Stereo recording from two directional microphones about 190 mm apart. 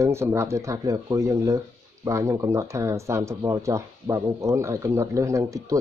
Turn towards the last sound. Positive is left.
turn(degrees=-15)  # may be behind; listen again after turning